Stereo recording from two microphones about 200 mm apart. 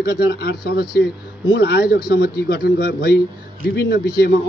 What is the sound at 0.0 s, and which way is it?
A man's voice, 55° left (ahead or behind).